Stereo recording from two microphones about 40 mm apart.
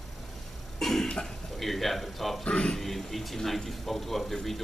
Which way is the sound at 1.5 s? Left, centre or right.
Centre.